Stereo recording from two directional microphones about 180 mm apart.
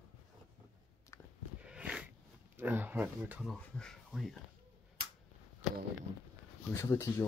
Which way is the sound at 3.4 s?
5° left (ahead or behind).